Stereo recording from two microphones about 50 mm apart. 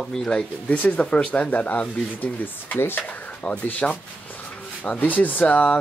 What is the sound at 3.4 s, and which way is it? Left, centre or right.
Speech, left.